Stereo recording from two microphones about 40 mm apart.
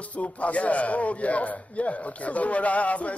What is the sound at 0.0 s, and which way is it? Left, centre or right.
A man's voice, left.